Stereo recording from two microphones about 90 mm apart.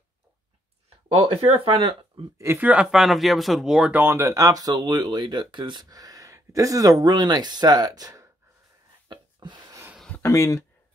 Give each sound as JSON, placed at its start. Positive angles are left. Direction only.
{"t": 1.2, "sound": "speech", "side_deg": -85}
{"t": 2.3, "sound": "speech", "side_deg": -30}
{"t": 2.6, "sound": "speech", "side_deg": -10}
{"t": 3.9, "sound": "speech", "side_deg": -25}
{"t": 4.2, "sound": "speech", "side_deg": -40}
{"t": 9.1, "sound": "a sound", "side_deg": -55}
{"t": 10.2, "sound": "speech", "side_deg": 35}